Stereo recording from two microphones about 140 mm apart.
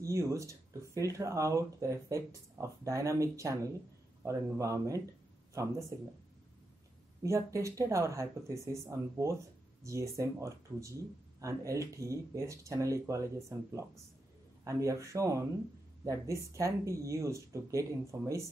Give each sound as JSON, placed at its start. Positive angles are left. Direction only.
{"t": 0.0, "sound": "speech", "side_deg": -20}
{"t": 7.2, "sound": "speech", "side_deg": -20}